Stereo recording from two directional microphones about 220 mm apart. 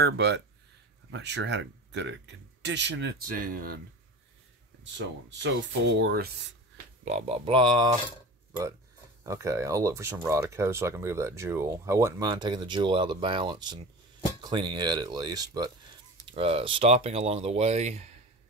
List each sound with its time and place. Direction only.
0.0 s speech: 50° right (ahead or behind)
4.9 s speech: 55° right (ahead or behind)
7.1 s speech: 30° right (ahead or behind)
9.2 s speech: 15° right (ahead or behind); by 18.1 s 30° right (ahead or behind)